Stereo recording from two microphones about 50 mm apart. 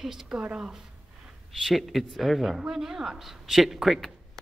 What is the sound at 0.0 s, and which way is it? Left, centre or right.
Speech, centre.